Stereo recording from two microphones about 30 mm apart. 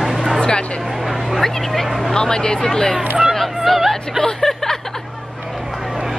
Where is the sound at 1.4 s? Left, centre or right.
Centre.